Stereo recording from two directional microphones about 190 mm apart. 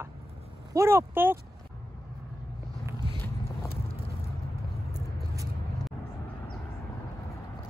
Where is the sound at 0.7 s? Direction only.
15° right (ahead or behind).